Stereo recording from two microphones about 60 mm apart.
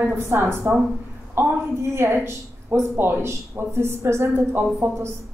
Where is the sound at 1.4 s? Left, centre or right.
Right.